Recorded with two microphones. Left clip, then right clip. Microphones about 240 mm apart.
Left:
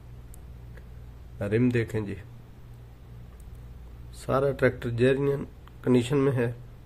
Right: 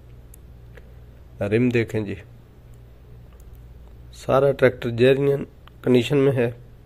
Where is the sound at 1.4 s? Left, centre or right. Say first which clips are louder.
Right 5 dB; centre.